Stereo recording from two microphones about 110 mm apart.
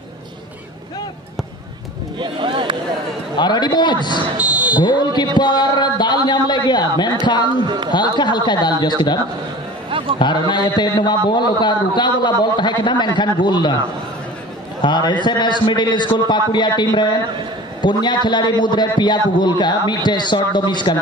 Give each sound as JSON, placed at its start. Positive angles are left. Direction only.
{"t": 2.1, "sound": "speech", "side_deg": -50}
{"t": 3.3, "sound": "a man's voice", "side_deg": 40}
{"t": 4.4, "sound": "a sound", "side_deg": -10}
{"t": 4.7, "sound": "a man's voice", "side_deg": 40}
{"t": 7.6, "sound": "a man's voice", "side_deg": -40}
{"t": 7.9, "sound": "a man's voice", "side_deg": 40}
{"t": 14.8, "sound": "a man's voice", "side_deg": 40}